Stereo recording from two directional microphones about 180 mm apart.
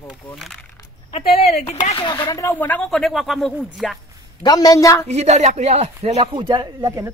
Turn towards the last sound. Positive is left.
turn(degrees=-20)  # may be behind; listen again after turning